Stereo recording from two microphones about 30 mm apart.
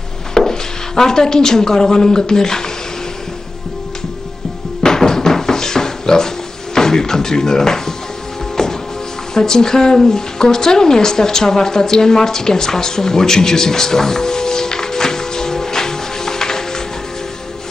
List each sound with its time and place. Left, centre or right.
0.3 s speech: centre
4.8 s a sound: centre
8.6 s music: centre
9.3 s a woman's voice: left